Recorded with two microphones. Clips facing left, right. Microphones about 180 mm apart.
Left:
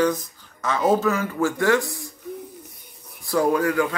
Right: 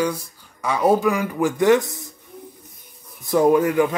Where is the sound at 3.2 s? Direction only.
20° right (ahead or behind).